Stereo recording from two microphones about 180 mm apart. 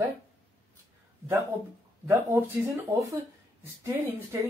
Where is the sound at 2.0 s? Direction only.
10° right (ahead or behind).